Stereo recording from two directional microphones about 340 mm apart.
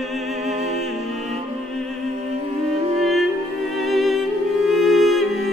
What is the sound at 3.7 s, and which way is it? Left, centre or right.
Music, centre.